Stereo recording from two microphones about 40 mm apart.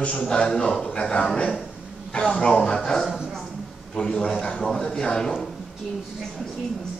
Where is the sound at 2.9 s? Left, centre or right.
Centre.